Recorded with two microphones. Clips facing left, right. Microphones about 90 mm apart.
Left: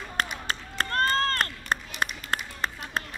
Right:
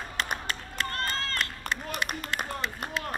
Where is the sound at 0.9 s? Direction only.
45° left (ahead or behind).